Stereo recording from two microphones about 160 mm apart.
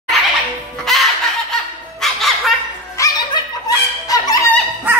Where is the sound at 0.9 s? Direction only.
Centre (ahead or behind).